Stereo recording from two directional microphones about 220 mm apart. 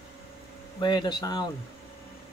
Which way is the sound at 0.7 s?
20° left (ahead or behind).